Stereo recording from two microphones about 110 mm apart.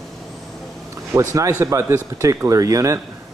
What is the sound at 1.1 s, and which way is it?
Speech, 30° right (ahead or behind).